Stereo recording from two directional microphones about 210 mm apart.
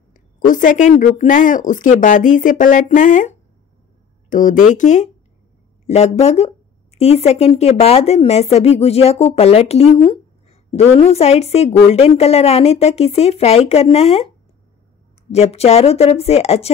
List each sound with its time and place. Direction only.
0.1 s a woman's voice: 40° left (ahead or behind)
15.3 s a woman's voice: 30° left (ahead or behind)